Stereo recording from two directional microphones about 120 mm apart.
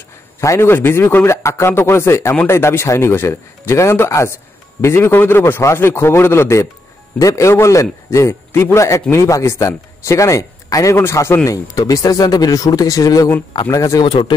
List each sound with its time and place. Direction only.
0.4 s speech: 25° left (ahead or behind)
14.0 s speech: 40° left (ahead or behind)